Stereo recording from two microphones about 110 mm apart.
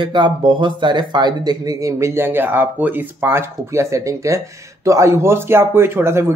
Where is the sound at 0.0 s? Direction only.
45° right (ahead or behind).